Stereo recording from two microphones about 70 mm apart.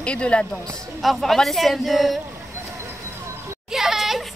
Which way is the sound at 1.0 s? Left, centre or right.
Centre.